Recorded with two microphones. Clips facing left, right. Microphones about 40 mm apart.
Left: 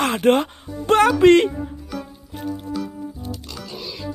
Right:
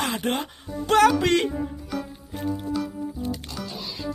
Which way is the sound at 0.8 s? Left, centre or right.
Left.